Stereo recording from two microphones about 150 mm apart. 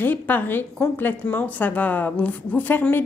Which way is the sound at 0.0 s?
10° left (ahead or behind).